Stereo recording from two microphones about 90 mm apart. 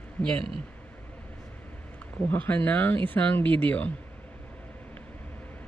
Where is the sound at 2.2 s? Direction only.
15° left (ahead or behind).